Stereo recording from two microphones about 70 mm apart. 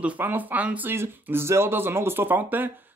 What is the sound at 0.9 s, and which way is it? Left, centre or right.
Speech, right.